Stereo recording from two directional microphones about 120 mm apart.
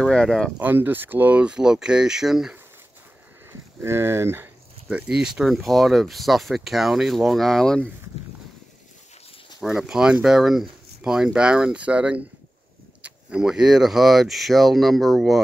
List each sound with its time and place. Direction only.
0.0 s speech: 5° left (ahead or behind)
0.6 s speech: 15° right (ahead or behind)
3.8 s speech: 20° right (ahead or behind)
4.8 s speech: 5° right (ahead or behind)
9.6 s speech: 5° right (ahead or behind)